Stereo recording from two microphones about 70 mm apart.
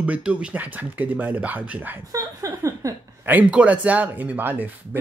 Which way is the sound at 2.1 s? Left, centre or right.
Right.